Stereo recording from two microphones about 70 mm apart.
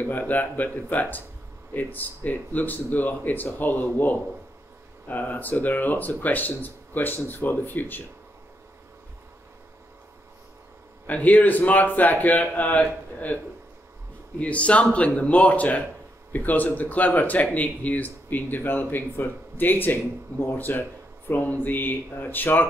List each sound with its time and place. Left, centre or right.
0.0 s speech: left
11.1 s speech: left
14.4 s speech: centre